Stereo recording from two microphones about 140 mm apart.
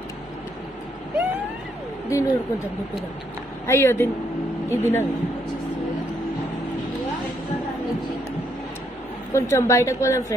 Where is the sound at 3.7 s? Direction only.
15° left (ahead or behind).